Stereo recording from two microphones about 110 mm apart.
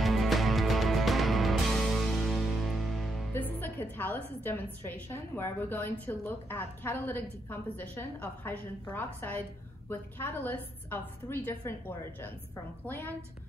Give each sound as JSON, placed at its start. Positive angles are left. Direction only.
{"t": 0.0, "sound": "music", "side_deg": 0}
{"t": 3.3, "sound": "music", "side_deg": 15}
{"t": 3.8, "sound": "a woman's voice", "side_deg": 15}